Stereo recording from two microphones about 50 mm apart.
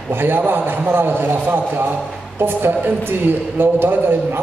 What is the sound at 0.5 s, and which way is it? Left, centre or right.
A man's voice, right.